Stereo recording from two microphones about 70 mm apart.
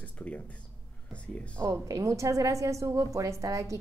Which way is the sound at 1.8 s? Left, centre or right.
Right.